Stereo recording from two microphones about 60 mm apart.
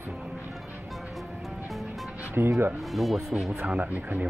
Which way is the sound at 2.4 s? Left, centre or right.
Right.